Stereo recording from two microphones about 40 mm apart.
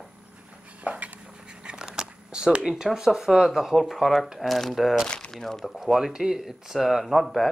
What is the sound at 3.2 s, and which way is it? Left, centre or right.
Speech, centre.